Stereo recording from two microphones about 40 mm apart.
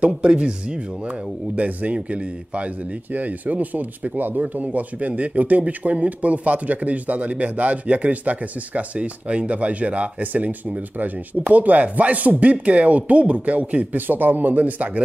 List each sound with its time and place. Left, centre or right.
0.0 s speech: right
13.9 s speech: right